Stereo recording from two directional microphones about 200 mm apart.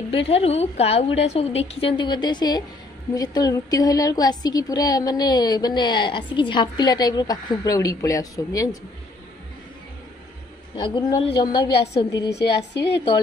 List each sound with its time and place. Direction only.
0.1 s a woman's voice: 30° left (ahead or behind)
11.3 s a woman's voice: 25° left (ahead or behind)
12.3 s speech: 55° left (ahead or behind)